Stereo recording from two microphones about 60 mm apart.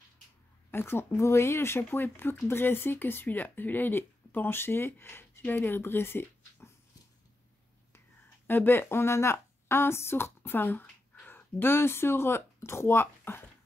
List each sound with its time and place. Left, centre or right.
0.7 s speech: left
1.2 s speech: left
8.5 s speech: left